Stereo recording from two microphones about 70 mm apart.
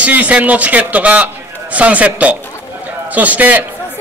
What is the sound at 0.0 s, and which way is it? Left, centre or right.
A man's voice, right.